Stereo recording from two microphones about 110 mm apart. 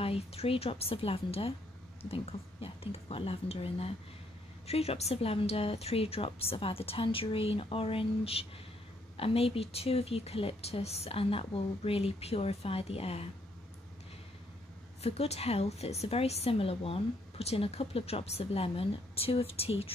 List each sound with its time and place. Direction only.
0.0 s a woman's voice: 60° left (ahead or behind)
15.0 s a woman's voice: 70° left (ahead or behind)